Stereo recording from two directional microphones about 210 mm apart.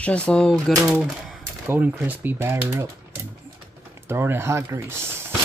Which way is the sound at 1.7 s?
10° right (ahead or behind).